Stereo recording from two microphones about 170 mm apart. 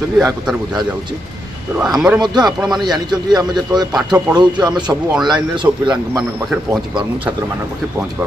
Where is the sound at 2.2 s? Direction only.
25° right (ahead or behind).